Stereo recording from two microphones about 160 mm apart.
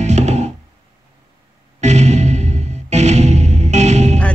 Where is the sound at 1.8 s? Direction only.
45° right (ahead or behind).